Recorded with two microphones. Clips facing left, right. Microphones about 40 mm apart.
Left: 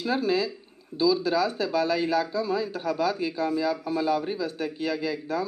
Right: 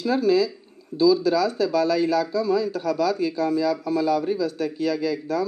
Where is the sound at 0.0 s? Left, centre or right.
Left.